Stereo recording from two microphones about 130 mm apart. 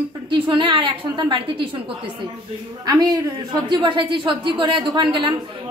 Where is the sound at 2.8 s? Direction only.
30° right (ahead or behind).